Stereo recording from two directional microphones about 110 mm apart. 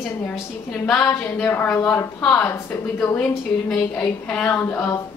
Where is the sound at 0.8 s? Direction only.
10° left (ahead or behind).